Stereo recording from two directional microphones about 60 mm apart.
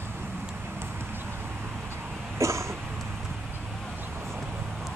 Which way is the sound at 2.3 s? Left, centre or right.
Right.